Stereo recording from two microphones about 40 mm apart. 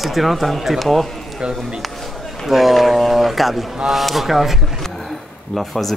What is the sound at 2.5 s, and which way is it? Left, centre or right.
Speech, centre.